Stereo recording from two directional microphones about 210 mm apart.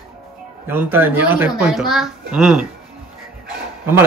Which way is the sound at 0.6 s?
10° right (ahead or behind).